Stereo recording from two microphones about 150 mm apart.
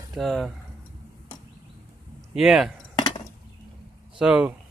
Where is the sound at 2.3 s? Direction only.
5° right (ahead or behind).